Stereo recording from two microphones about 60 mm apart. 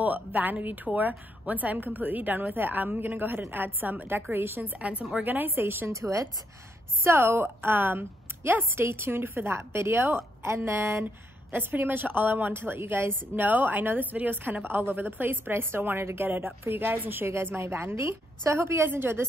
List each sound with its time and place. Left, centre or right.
0.0 s a woman's voice: right
5.9 s speech: right
7.0 s a woman's voice: right
17.3 s a woman's voice: right